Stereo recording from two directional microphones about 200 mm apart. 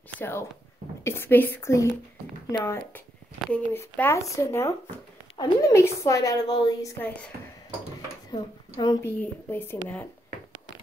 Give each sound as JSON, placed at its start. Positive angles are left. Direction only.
{"t": 0.2, "sound": "a woman's voice", "side_deg": 10}
{"t": 8.3, "sound": "a woman's voice", "side_deg": 20}